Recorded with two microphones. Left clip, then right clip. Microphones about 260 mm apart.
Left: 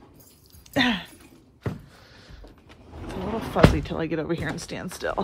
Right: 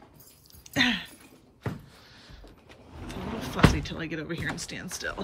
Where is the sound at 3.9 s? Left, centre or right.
Left.